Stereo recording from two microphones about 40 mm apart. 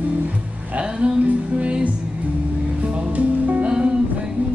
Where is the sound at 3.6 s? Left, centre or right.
Right.